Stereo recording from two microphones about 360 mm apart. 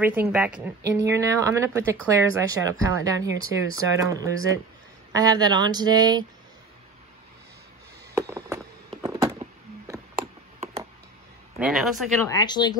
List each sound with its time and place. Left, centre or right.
0.0 s speech: centre
8.1 s a sound: centre
11.6 s speech: centre
12.4 s speech: centre